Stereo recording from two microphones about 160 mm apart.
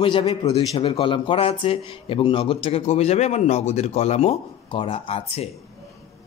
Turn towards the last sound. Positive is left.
turn(degrees=35)  # may be behind; listen again after turning